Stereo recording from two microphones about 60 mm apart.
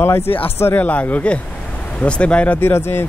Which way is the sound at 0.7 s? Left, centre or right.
Left.